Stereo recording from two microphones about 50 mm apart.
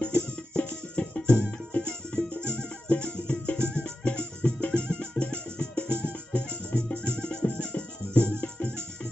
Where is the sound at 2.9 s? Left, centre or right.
Left.